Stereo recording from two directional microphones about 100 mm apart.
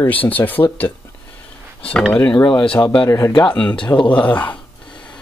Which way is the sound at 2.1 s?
45° left (ahead or behind).